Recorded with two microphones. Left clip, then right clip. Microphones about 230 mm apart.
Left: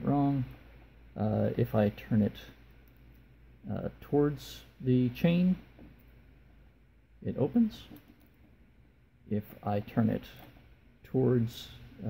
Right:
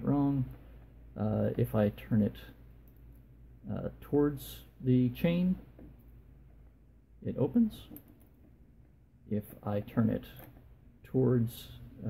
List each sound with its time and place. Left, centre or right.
0.0 s a sound: centre
1.1 s speech: centre
3.6 s speech: centre
7.2 s speech: centre
9.3 s speech: left